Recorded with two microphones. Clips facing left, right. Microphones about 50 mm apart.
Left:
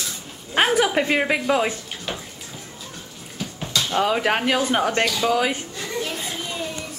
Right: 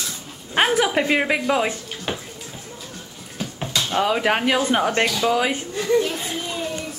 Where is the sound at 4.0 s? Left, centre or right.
Centre.